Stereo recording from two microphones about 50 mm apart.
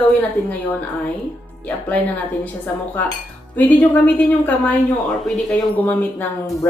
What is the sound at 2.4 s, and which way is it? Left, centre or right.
Speech, left.